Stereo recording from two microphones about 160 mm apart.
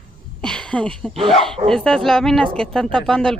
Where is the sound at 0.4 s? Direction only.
5° left (ahead or behind).